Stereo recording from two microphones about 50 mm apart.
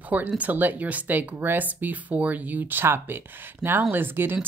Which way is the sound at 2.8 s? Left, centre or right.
Right.